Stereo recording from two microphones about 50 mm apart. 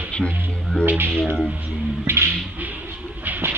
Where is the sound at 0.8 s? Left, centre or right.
Right.